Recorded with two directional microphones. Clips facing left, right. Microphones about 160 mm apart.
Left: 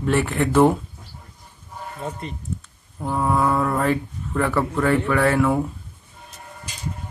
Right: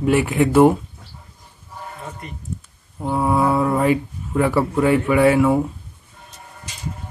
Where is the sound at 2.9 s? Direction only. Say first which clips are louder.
Right 3 dB; 10° right (ahead or behind).